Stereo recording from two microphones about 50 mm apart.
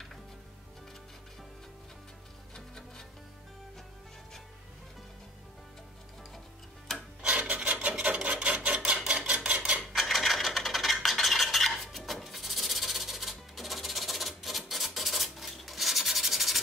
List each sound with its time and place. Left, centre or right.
2.5 s music: centre
7.2 s filing: right
8.0 s rub: right
9.3 s a sound: right
9.9 s stir: centre